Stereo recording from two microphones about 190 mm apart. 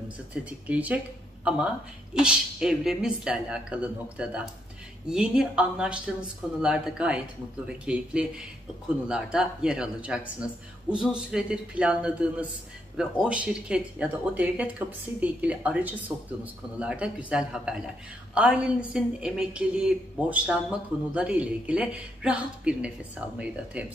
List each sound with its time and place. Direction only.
0.3 s speech: 5° right (ahead or behind)